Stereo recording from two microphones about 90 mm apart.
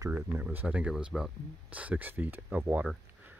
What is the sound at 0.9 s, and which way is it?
Speech, 5° right (ahead or behind).